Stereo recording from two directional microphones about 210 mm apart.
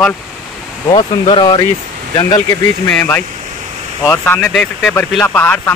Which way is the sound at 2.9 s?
10° left (ahead or behind).